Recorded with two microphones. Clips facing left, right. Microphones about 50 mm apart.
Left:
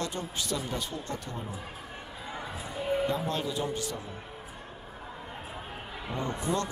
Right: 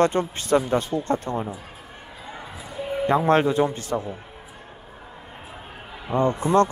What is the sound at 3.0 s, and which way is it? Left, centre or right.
Speech, right.